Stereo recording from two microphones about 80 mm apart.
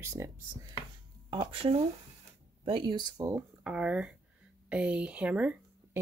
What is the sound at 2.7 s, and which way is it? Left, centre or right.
Speech, right.